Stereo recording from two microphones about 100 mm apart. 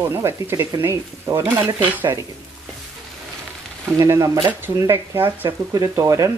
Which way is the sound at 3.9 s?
35° right (ahead or behind).